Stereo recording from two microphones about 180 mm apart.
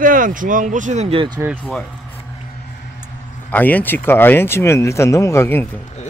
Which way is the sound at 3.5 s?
10° left (ahead or behind).